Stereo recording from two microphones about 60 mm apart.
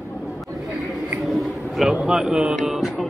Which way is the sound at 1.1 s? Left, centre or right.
Centre.